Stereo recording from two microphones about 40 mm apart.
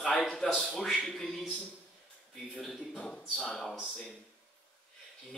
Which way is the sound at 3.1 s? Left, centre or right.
Centre.